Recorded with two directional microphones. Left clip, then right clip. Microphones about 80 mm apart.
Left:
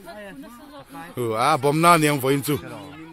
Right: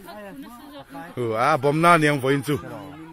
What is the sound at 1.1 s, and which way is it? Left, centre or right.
A man's voice, left.